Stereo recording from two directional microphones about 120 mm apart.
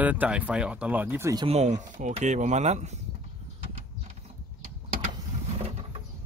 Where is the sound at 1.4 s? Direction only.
70° right (ahead or behind).